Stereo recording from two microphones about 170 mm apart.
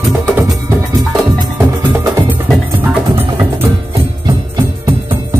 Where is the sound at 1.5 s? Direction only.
15° right (ahead or behind).